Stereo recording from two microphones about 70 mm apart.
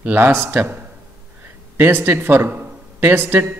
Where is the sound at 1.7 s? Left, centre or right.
Right.